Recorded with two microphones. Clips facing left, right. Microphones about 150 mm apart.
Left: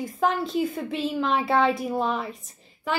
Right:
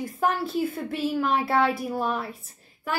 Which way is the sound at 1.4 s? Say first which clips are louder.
Left 1 dB; 20° left (ahead or behind).